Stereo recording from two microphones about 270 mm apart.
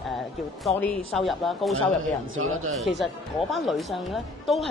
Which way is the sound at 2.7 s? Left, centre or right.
Centre.